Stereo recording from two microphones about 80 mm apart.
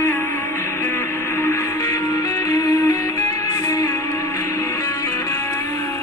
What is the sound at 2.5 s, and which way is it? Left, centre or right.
Music, left.